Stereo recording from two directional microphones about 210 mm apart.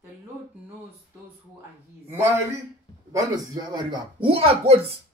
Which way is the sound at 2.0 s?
10° right (ahead or behind).